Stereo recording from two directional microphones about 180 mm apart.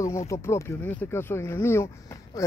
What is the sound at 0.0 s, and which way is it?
Speech, 15° left (ahead or behind).